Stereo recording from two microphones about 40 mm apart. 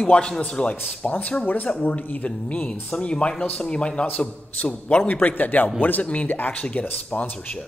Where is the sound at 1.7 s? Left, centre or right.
Left.